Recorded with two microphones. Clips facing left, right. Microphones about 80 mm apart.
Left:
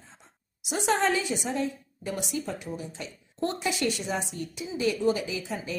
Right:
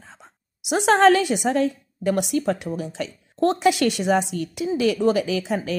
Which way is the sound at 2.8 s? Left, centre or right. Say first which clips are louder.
Right 9 dB; right.